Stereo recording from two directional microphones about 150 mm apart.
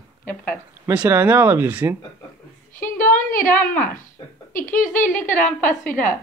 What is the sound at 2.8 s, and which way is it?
Speech, 65° left (ahead or behind).